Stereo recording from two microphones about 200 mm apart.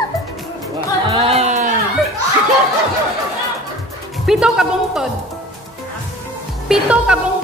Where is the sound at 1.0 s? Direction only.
25° right (ahead or behind).